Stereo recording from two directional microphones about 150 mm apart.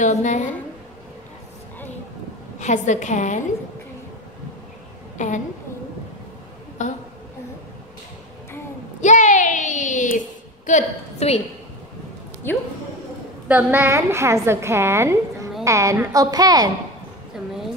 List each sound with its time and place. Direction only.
0.0 s a woman's voice: 55° left (ahead or behind)
2.6 s a woman's voice: 55° left (ahead or behind)
5.1 s a woman's voice: 55° left (ahead or behind)
6.8 s a sound: 55° left (ahead or behind)
9.0 s a sound: 55° left (ahead or behind)
10.7 s a woman's voice: 50° left (ahead or behind)
12.4 s a woman's voice: 15° left (ahead or behind)
13.5 s a woman's voice: 10° right (ahead or behind)